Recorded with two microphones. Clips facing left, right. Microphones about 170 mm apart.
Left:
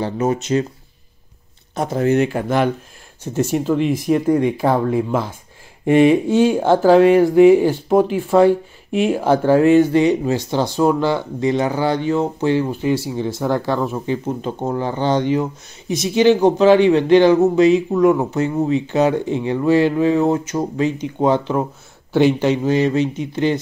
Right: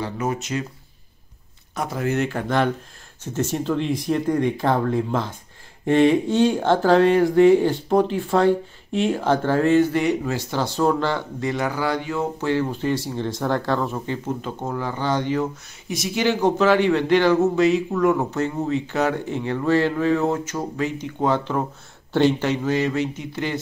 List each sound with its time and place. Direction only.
0.0 s a man's voice: 25° left (ahead or behind)
1.8 s a man's voice: 25° left (ahead or behind)